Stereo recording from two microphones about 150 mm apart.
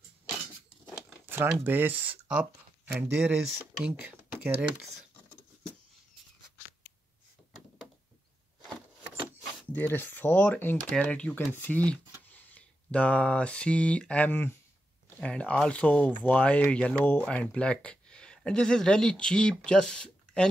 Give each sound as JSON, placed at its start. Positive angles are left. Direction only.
{"t": 1.2, "sound": "a sound", "side_deg": -15}
{"t": 1.5, "sound": "speech", "side_deg": -15}
{"t": 9.7, "sound": "speech", "side_deg": 15}